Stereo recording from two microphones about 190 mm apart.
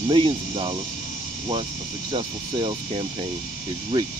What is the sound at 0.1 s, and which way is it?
Speech, 25° right (ahead or behind).